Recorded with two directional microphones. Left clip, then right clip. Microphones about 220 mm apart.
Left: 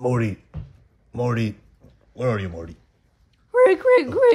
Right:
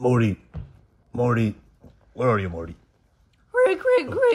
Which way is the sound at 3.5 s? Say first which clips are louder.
Left 4 dB; 45° left (ahead or behind).